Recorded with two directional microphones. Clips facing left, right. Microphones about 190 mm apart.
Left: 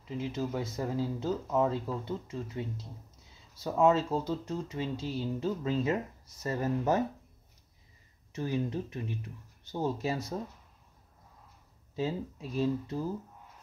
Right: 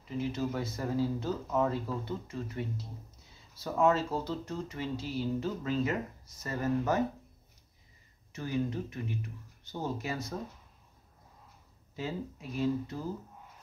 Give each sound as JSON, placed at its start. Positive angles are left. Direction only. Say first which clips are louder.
{"t": 0.2, "sound": "speech", "louder": "right 1 dB", "side_deg": 15}
{"t": 3.6, "sound": "speech", "louder": "left 2 dB", "side_deg": 20}
{"t": 8.4, "sound": "speech", "louder": "left 1 dB", "side_deg": 25}
{"t": 11.9, "sound": "speech", "louder": "left 4 dB", "side_deg": 25}